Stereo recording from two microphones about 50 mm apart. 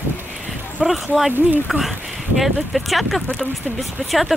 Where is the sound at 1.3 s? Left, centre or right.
Right.